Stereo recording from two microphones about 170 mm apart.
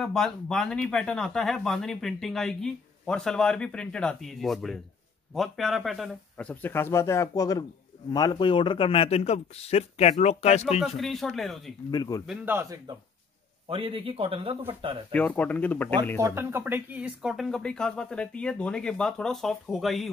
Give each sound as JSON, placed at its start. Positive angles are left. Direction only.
{"t": 0.0, "sound": "speech", "side_deg": 5}
{"t": 11.0, "sound": "speech", "side_deg": 0}
{"t": 11.9, "sound": "a man's voice", "side_deg": 25}
{"t": 12.3, "sound": "a man's voice", "side_deg": -15}
{"t": 13.7, "sound": "speech", "side_deg": -30}
{"t": 15.1, "sound": "speech", "side_deg": 10}
{"t": 16.2, "sound": "speech", "side_deg": -15}